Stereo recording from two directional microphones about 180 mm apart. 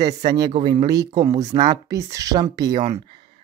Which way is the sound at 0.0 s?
20° right (ahead or behind).